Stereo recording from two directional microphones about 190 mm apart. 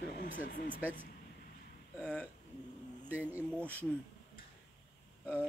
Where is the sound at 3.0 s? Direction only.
10° right (ahead or behind).